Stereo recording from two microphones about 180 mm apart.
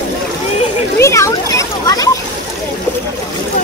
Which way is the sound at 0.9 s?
15° left (ahead or behind).